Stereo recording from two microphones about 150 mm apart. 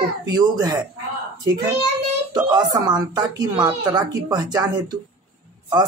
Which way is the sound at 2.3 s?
30° right (ahead or behind).